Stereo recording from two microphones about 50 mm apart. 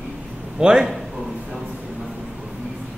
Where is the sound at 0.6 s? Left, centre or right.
Centre.